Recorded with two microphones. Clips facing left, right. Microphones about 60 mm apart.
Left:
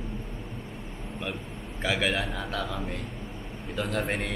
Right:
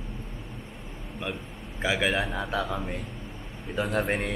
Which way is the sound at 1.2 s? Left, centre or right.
Centre.